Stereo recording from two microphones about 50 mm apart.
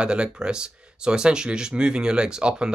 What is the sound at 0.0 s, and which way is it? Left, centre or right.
Speech, centre.